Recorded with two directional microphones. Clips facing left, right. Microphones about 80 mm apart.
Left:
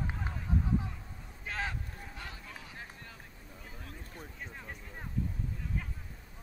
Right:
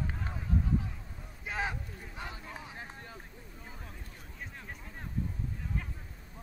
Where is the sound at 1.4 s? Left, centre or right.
Centre.